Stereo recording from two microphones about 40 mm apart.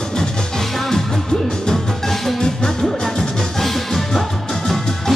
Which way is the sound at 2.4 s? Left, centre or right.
Centre.